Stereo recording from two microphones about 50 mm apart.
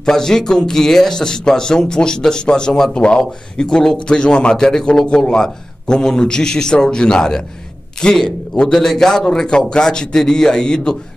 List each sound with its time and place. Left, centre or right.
0.0 s a man's voice: centre